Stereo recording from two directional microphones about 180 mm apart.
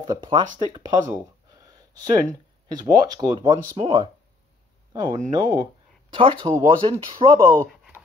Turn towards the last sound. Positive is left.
turn(degrees=-30)  # may be behind; listen again after turning